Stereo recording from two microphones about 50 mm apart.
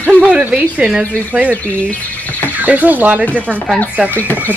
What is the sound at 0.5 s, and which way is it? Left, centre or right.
Speech, centre.